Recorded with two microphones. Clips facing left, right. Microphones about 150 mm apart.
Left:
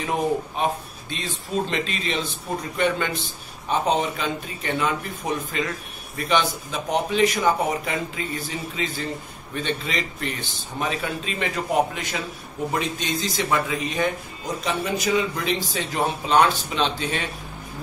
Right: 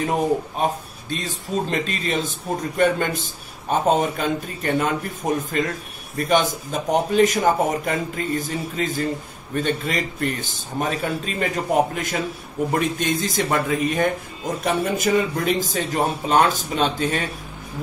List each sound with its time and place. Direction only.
0.0 s speech: 45° right (ahead or behind)